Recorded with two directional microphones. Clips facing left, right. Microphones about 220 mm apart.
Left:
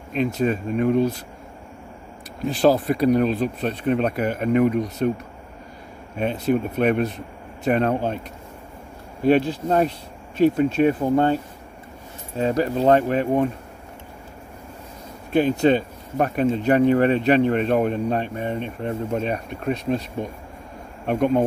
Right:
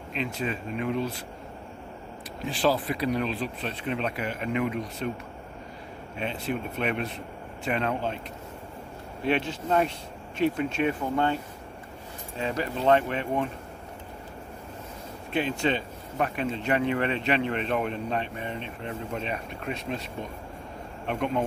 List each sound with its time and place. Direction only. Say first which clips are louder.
0.1 s speech: left 9 dB; 45° left (ahead or behind)
2.4 s speech: left 8 dB; 45° left (ahead or behind)
9.2 s speech: left 9 dB; 40° left (ahead or behind)
12.4 s speech: left 9 dB; 40° left (ahead or behind)
15.3 s speech: left 9 dB; 40° left (ahead or behind)
21.1 s speech: left 8 dB; 45° left (ahead or behind)